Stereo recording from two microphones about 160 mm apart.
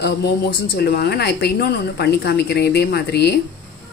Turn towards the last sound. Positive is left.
turn(degrees=90)